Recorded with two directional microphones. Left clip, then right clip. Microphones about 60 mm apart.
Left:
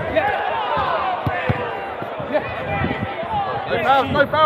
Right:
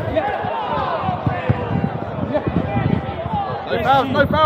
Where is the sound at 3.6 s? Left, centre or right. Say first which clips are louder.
Right 1 dB; right.